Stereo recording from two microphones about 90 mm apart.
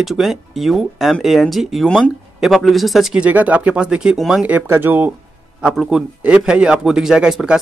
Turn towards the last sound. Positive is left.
turn(degrees=-10)  # may be behind; listen again after turning